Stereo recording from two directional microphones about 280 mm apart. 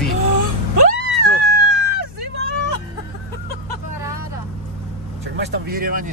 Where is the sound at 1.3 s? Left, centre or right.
Right.